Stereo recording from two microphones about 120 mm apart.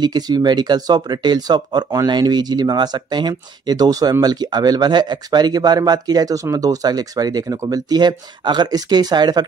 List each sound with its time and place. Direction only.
0.0 s speech: 35° right (ahead or behind)